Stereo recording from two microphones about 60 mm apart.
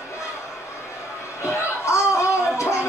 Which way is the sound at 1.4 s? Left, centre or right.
Left.